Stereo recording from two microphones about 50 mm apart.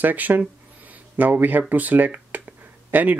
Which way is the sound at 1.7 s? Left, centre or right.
Right.